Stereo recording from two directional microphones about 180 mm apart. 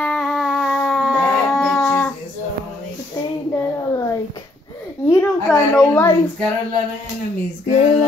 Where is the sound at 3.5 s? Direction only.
20° left (ahead or behind).